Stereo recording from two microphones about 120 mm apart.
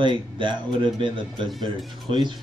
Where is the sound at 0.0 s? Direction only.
40° right (ahead or behind).